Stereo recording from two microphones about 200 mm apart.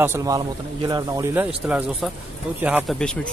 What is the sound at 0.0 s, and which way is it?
Speech, 15° right (ahead or behind).